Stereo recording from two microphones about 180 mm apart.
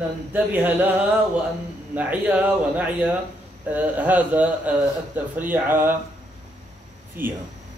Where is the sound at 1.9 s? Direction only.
10° right (ahead or behind).